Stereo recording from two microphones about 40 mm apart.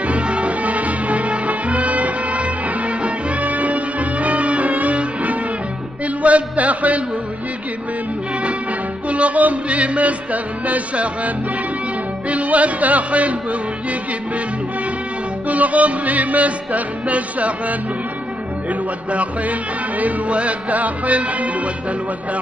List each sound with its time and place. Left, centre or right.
0.0 s music: right
6.2 s a sound: right
9.1 s music: right
15.4 s music: right
20.0 s music: right